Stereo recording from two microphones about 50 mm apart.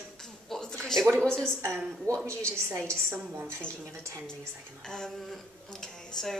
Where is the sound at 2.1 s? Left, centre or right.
Right.